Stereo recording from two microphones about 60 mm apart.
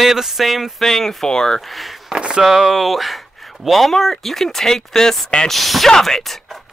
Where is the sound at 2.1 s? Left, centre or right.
Centre.